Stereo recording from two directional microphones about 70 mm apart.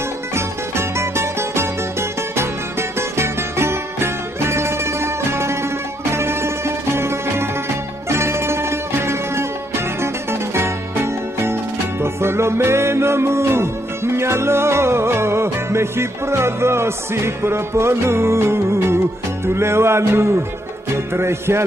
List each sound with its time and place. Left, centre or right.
0.3 s music: right